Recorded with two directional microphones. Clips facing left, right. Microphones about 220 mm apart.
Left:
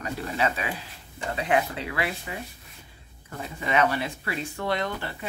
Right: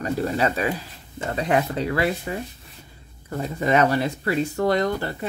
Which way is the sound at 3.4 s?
40° right (ahead or behind).